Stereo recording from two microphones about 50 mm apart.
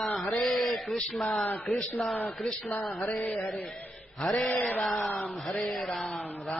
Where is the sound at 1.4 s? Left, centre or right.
Left.